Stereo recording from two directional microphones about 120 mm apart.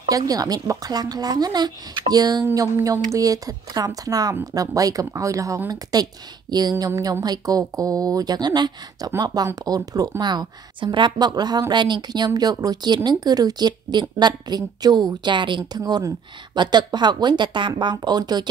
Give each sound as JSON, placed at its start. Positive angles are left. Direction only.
{"t": 0.1, "sound": "speech", "side_deg": -30}